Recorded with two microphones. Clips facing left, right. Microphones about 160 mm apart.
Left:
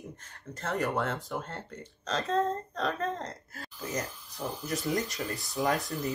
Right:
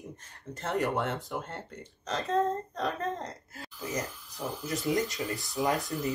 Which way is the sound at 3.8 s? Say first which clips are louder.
Even; centre (ahead or behind).